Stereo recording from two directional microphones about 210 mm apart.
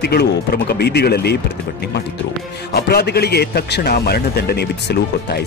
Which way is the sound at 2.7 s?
50° left (ahead or behind).